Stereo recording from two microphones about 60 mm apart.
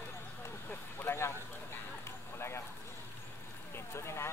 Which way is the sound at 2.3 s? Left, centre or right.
Left.